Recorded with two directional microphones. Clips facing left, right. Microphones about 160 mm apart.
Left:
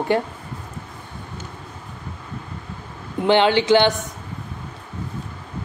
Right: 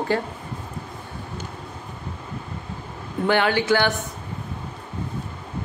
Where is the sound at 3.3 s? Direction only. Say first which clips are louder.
Left 4 dB; 20° left (ahead or behind).